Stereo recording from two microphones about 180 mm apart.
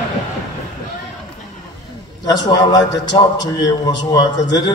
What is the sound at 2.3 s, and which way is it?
A man's voice, 20° left (ahead or behind).